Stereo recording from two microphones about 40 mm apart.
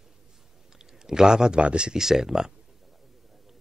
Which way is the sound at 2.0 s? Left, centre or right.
Centre.